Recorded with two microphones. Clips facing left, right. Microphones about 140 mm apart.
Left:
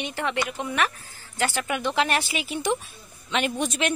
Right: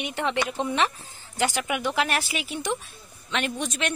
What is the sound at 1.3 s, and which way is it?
A woman's voice, 15° right (ahead or behind).